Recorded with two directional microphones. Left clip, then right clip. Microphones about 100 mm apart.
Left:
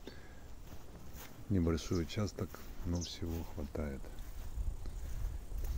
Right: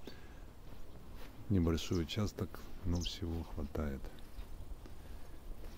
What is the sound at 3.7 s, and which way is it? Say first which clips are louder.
Speech: even; 30° right (ahead or behind).